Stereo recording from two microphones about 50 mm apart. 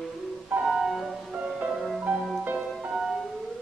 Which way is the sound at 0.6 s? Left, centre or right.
Centre.